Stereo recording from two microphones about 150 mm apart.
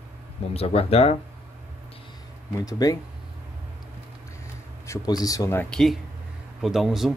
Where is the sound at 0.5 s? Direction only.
40° left (ahead or behind).